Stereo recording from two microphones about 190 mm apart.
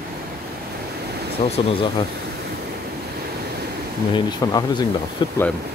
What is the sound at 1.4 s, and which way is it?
Speech, 35° left (ahead or behind).